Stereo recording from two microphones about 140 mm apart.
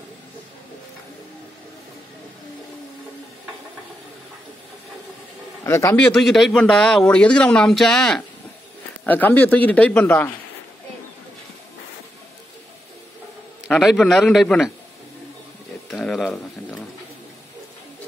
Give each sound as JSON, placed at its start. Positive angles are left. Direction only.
{"t": 5.6, "sound": "speech", "side_deg": 20}
{"t": 6.1, "sound": "a man's voice", "side_deg": 0}
{"t": 13.7, "sound": "a man's voice", "side_deg": 0}
{"t": 15.9, "sound": "a sound", "side_deg": 5}